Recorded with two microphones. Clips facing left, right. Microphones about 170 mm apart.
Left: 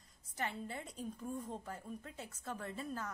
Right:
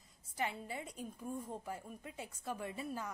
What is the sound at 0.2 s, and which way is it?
A woman's voice, 10° right (ahead or behind).